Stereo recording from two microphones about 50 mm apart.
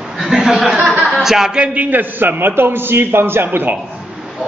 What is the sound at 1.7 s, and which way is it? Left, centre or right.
A man's voice, right.